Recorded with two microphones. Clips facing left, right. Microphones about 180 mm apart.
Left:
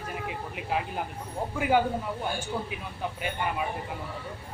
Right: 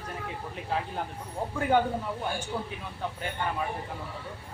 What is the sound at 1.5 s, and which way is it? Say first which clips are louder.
Speech: even; 5° left (ahead or behind).